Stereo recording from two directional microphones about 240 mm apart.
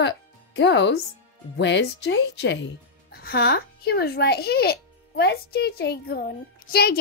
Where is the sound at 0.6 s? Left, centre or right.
Left.